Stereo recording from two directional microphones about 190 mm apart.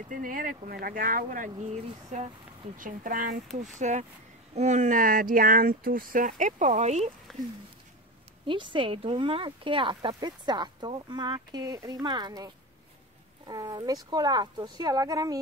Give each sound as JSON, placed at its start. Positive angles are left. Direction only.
{"t": 0.1, "sound": "speech", "side_deg": -45}
{"t": 7.3, "sound": "a sound", "side_deg": 0}
{"t": 8.5, "sound": "speech", "side_deg": -25}
{"t": 13.5, "sound": "speech", "side_deg": -20}